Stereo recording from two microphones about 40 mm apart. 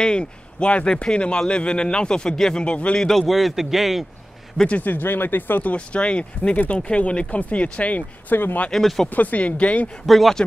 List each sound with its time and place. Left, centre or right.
0.0 s speech: left
3.0 s a man's voice: centre
4.6 s speech: left
5.6 s speech: left
6.5 s speech: left
8.3 s speech: left
8.7 s speech: centre
9.1 s speech: left
10.0 s a man's voice: centre